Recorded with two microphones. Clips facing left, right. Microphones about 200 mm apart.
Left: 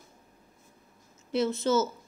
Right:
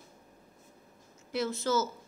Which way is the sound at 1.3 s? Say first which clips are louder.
Left 4 dB; 25° left (ahead or behind).